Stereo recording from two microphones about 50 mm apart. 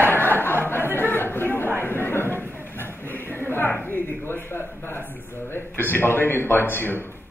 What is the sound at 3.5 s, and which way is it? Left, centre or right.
A man's voice, left.